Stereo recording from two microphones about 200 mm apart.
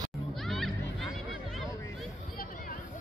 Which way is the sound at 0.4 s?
Centre (ahead or behind).